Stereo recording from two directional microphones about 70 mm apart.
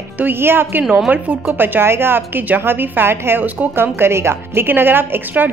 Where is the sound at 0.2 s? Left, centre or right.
Right.